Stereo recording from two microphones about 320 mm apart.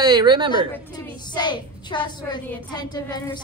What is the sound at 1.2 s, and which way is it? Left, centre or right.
A woman's voice, centre.